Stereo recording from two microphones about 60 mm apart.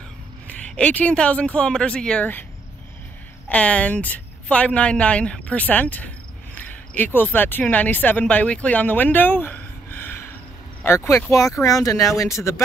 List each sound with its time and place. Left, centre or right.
0.5 s speech: left
3.4 s a woman's voice: left
11.1 s speech: left